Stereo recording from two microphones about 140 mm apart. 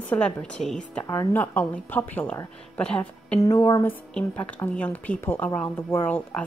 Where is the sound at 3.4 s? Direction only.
25° left (ahead or behind).